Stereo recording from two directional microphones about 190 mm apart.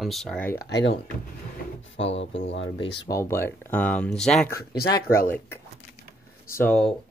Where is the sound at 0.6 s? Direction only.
65° left (ahead or behind).